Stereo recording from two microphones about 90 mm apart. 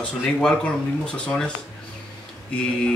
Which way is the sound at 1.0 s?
15° left (ahead or behind).